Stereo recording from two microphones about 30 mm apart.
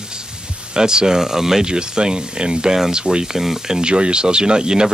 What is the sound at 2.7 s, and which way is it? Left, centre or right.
Speech, centre.